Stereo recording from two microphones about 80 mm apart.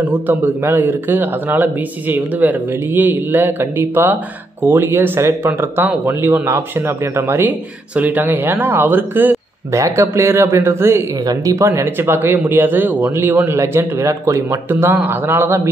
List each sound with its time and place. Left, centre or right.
0.0 s a man's voice: right
9.7 s speech: right
11.8 s a man's voice: right